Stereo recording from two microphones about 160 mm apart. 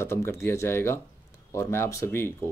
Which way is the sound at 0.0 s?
15° left (ahead or behind).